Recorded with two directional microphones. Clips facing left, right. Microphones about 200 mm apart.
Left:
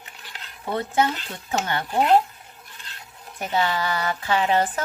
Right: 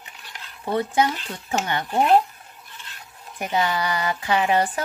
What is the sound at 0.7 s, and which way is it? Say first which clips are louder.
Speech: right 1 dB; 15° right (ahead or behind).